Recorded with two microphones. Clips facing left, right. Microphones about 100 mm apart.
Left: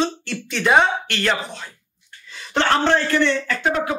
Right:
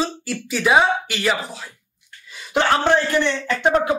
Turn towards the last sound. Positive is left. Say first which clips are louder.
# even
turn(degrees=-20)  # may be behind; listen again after turning